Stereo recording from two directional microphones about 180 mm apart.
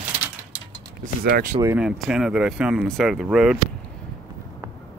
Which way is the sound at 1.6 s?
10° right (ahead or behind).